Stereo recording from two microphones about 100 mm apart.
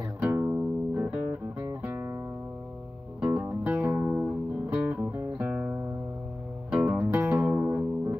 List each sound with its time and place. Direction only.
0.2 s music: 15° right (ahead or behind)
3.2 s music: 5° right (ahead or behind)
3.4 s music: 20° right (ahead or behind)